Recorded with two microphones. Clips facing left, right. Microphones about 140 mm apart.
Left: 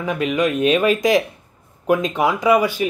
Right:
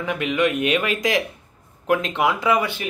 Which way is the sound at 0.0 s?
20° left (ahead or behind).